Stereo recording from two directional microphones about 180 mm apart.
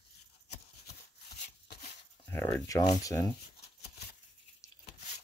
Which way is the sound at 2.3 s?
15° left (ahead or behind).